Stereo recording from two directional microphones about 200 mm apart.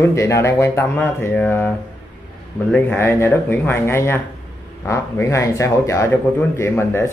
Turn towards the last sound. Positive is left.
turn(degrees=10)  # may be behind; listen again after turning